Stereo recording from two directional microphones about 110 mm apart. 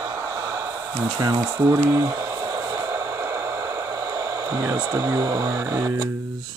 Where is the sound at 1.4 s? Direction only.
25° right (ahead or behind).